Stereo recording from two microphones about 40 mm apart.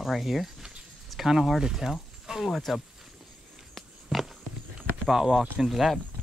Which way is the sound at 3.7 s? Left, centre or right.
Centre.